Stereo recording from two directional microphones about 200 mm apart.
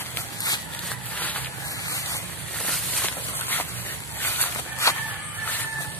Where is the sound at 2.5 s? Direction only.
5° left (ahead or behind).